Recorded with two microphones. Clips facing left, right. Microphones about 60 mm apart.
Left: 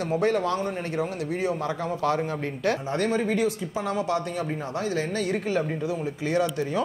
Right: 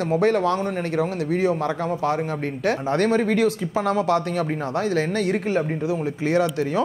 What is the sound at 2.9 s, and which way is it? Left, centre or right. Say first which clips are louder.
Speech: right 5 dB; right.